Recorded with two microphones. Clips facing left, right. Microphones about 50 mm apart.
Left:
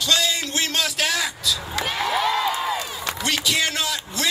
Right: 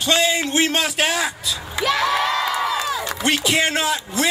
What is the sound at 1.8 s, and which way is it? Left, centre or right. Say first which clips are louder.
Crowd: right 4 dB; right.